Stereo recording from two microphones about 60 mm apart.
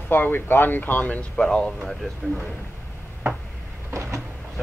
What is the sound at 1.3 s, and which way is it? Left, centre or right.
Speech, centre.